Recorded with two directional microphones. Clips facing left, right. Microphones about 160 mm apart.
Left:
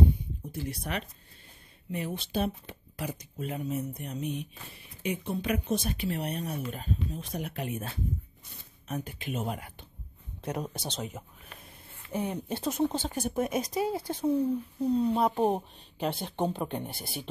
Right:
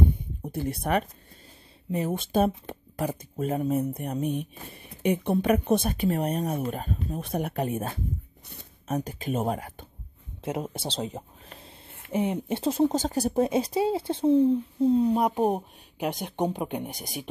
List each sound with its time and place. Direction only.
0.4 s speech: 55° right (ahead or behind)
1.9 s speech: 40° right (ahead or behind)
10.4 s speech: 25° right (ahead or behind)
12.1 s speech: 20° right (ahead or behind)
12.9 s speech: 40° right (ahead or behind); by 17.3 s 15° right (ahead or behind)